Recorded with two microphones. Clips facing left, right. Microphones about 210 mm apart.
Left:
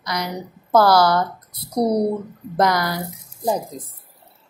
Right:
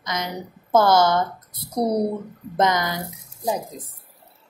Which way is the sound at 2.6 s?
20° right (ahead or behind).